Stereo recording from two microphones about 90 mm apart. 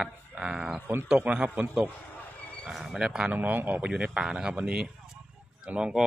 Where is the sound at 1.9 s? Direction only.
20° left (ahead or behind).